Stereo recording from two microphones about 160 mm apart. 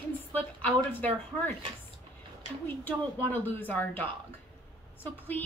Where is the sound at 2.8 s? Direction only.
10° left (ahead or behind).